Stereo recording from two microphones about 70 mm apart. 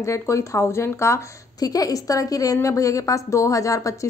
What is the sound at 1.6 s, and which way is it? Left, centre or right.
A woman's voice, left.